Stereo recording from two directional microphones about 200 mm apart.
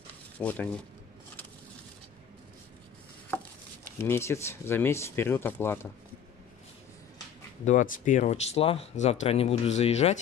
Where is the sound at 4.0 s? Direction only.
15° left (ahead or behind).